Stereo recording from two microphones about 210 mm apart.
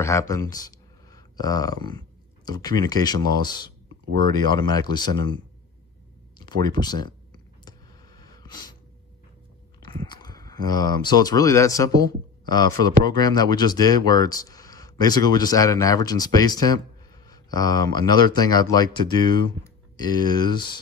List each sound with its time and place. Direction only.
0.0 s speech: 15° left (ahead or behind)
7.6 s a sound: 20° left (ahead or behind)
9.8 s speech: 20° left (ahead or behind)